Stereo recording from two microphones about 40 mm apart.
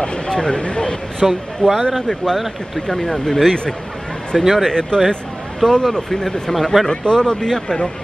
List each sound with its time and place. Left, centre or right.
0.0 s speech: centre
1.2 s speech: centre
2.3 s speech: centre
2.9 s speech: centre
4.6 s speech: centre
6.5 s speech: centre
6.9 s speech: centre